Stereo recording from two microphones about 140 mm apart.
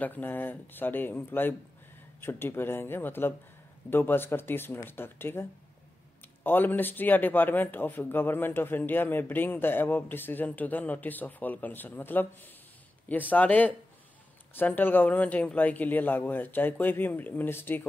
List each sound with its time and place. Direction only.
0.0 s speech: 15° left (ahead or behind)